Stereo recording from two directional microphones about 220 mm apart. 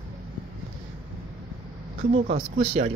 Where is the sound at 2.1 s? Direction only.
35° right (ahead or behind).